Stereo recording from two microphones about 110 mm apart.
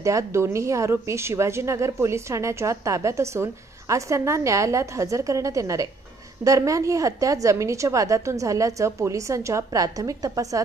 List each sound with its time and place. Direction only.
0.0 s a woman's voice: 25° right (ahead or behind)